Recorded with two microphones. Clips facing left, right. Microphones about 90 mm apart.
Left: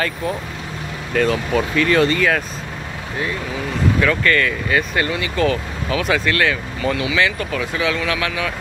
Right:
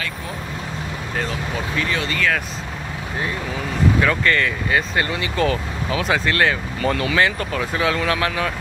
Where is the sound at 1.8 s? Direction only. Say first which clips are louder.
Left 9 dB; 55° left (ahead or behind).